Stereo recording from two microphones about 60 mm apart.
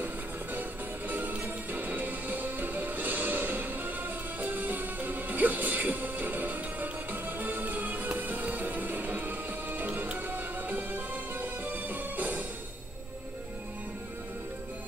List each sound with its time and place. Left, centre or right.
0.0 s music: right